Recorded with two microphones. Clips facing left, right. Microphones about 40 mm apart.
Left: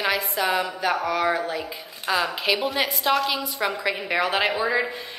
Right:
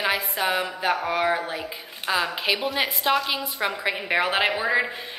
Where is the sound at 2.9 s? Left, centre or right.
Centre.